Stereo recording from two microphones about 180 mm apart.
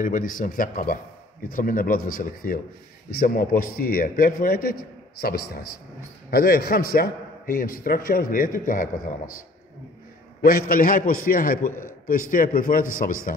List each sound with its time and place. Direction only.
0.0 s a man's voice: 50° left (ahead or behind)
10.4 s a man's voice: 55° left (ahead or behind)
11.6 s a man's voice: 10° left (ahead or behind)
12.1 s a man's voice: 50° left (ahead or behind)